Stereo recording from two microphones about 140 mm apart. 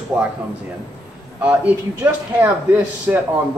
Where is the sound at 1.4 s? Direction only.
10° right (ahead or behind).